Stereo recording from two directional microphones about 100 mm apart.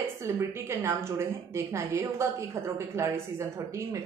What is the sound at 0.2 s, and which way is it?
Speech, 30° right (ahead or behind).